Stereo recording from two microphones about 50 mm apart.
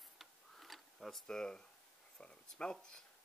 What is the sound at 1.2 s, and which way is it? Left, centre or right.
Speech, centre.